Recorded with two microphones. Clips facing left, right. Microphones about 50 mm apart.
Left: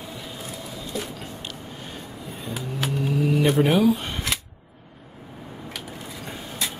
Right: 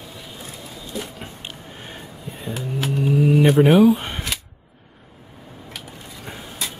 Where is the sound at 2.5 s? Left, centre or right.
Centre.